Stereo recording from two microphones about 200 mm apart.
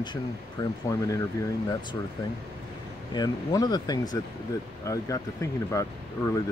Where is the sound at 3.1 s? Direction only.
20° left (ahead or behind).